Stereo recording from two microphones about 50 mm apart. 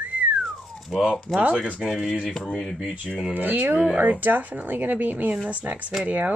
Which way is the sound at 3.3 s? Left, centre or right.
Right.